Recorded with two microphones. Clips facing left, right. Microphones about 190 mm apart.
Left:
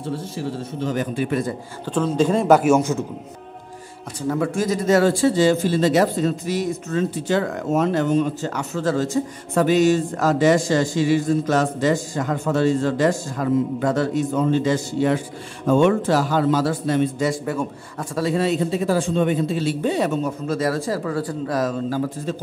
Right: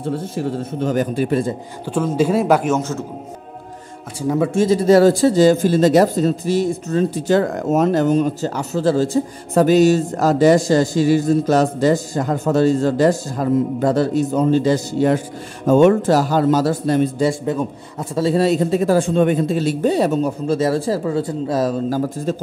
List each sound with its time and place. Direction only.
0.0 s a man's voice: 50° right (ahead or behind)
1.9 s speech: 10° right (ahead or behind)
2.7 s a man's voice: 15° left (ahead or behind)
4.3 s speech: 20° right (ahead or behind); by 22.3 s 40° right (ahead or behind)